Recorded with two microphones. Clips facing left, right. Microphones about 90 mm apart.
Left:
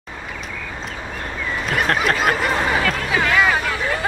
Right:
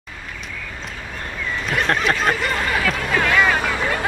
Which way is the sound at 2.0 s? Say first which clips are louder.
Left 1 dB; 5° left (ahead or behind).